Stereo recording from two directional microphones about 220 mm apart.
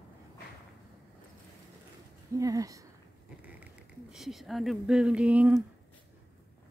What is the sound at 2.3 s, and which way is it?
Speech, 15° right (ahead or behind).